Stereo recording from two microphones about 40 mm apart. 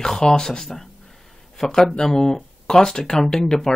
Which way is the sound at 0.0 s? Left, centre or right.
Centre.